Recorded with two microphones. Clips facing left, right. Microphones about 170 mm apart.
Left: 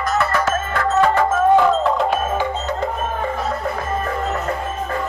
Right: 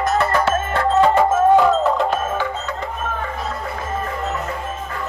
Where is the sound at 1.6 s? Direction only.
Centre (ahead or behind).